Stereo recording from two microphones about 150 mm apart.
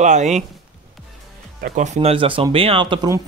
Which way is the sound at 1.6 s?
55° right (ahead or behind).